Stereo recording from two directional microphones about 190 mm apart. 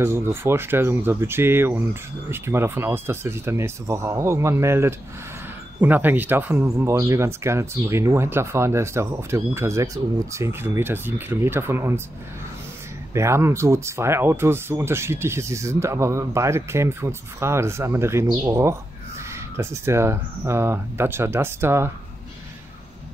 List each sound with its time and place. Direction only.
0.0 s speech: 10° right (ahead or behind)
13.1 s speech: 15° right (ahead or behind)